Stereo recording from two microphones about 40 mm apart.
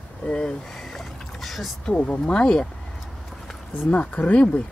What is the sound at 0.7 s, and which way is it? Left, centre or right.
Rowboat, centre.